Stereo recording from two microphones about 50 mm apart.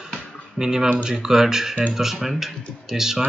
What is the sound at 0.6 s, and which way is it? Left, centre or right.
Speech, centre.